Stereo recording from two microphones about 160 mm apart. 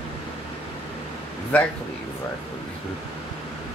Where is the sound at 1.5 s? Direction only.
10° left (ahead or behind).